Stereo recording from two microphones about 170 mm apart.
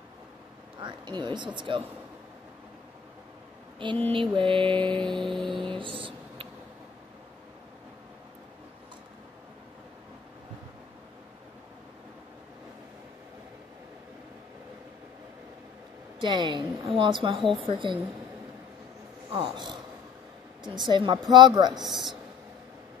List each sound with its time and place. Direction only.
0.7 s a woman's voice: 25° right (ahead or behind)
4.1 s music: 30° right (ahead or behind)
5.2 s music: centre (ahead or behind)
5.7 s a sound: 30° right (ahead or behind)
16.2 s a woman's voice: 25° right (ahead or behind)
19.3 s a woman's voice: 25° right (ahead or behind)
21.8 s music: centre (ahead or behind)